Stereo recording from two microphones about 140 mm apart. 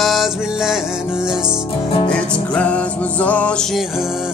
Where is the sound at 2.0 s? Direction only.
10° left (ahead or behind).